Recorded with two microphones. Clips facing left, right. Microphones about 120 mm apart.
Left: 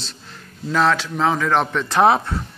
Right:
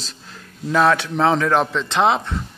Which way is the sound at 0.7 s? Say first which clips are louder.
Right 2 dB; 20° right (ahead or behind).